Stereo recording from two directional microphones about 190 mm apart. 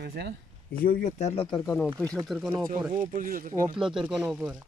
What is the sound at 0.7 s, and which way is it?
Speech, 45° left (ahead or behind).